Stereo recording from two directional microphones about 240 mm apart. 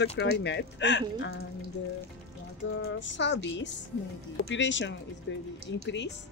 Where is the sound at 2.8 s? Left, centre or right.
Left.